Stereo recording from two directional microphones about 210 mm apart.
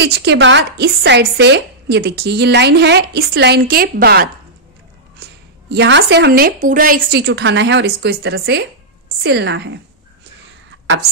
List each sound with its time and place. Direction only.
0.0 s speech: 55° right (ahead or behind)